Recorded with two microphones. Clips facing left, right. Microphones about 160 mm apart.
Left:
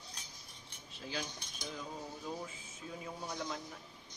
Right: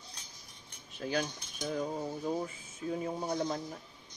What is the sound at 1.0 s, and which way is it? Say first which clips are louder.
Cutlery: right 9 dB; 55° right (ahead or behind).